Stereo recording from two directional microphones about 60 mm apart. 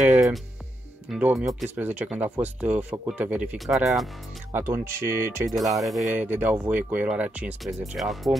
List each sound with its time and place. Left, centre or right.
0.1 s music: centre
1.3 s speech: centre
1.8 s speech: right
3.5 s speech: centre
4.5 s speech: right
5.5 s speech: centre
6.1 s speech: right
8.0 s speech: centre